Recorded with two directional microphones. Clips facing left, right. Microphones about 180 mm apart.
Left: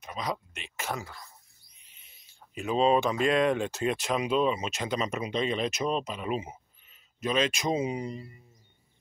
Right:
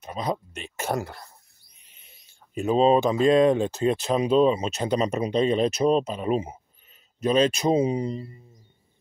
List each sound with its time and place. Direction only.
0.0 s speech: 35° right (ahead or behind)
1.0 s speech: 65° right (ahead or behind)
1.9 s speech: 45° right (ahead or behind)